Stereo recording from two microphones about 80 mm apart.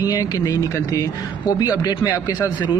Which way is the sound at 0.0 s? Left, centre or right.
Left.